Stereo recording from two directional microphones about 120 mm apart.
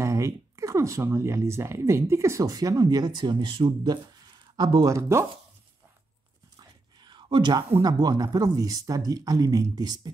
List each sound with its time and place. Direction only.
0.0 s speech: 25° right (ahead or behind)
6.6 s whispering: 40° right (ahead or behind)
7.8 s speech: 35° right (ahead or behind)